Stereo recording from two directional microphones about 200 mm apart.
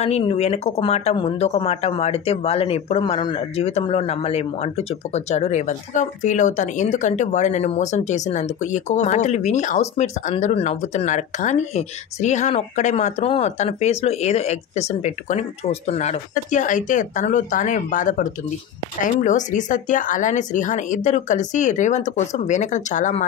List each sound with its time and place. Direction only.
0.0 s speech: 30° left (ahead or behind)